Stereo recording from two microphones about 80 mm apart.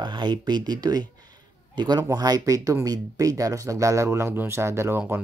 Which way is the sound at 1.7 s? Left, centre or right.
Right.